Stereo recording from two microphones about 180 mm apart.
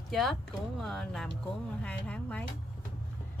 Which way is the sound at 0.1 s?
Centre (ahead or behind).